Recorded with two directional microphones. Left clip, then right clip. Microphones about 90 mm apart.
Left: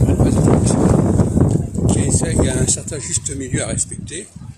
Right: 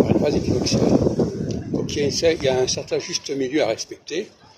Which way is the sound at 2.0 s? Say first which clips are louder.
Right 6 dB; 30° left (ahead or behind).